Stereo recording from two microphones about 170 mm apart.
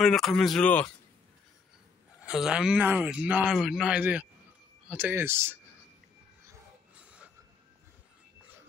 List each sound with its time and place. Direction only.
0.0 s speech: centre (ahead or behind)
2.2 s speech: 5° right (ahead or behind)